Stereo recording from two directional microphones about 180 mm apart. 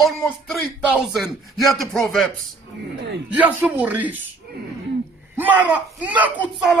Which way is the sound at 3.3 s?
10° right (ahead or behind).